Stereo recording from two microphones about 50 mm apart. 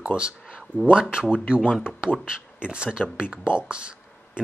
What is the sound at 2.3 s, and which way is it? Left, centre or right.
Speech, right.